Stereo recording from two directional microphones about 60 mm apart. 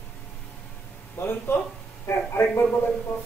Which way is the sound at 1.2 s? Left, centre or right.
Left.